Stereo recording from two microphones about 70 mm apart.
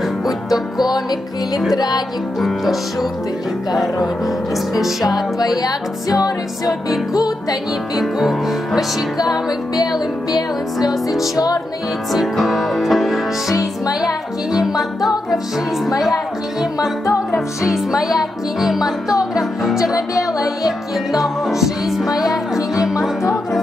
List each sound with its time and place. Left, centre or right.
1.8 s music: left
2.4 s music: centre
4.7 s music: centre
5.4 s music: left
7.9 s music: centre
9.9 s music: left
12.1 s music: centre
13.5 s music: left
14.5 s music: centre
17.6 s music: centre